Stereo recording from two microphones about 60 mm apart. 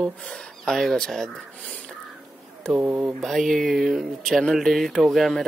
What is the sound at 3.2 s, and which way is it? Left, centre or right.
Speech, centre.